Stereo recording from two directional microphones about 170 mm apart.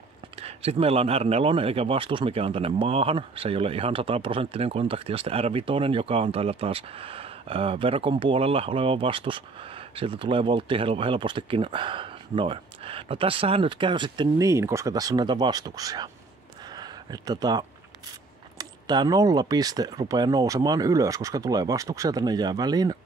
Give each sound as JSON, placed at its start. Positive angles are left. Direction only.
{"t": 0.4, "sound": "speech", "side_deg": -35}
{"t": 16.7, "sound": "a sound", "side_deg": -25}
{"t": 18.6, "sound": "speech", "side_deg": -25}